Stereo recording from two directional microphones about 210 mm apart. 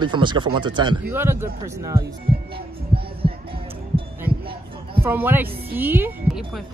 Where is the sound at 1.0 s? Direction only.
10° right (ahead or behind).